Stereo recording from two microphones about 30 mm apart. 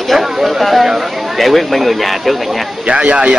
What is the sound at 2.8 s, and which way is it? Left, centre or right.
Speech, right.